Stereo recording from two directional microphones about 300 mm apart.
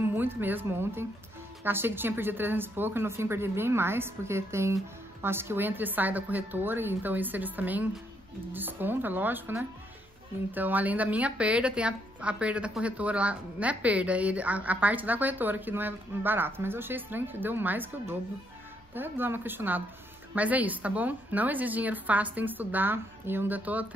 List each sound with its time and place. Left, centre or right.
0.0 s a woman's voice: centre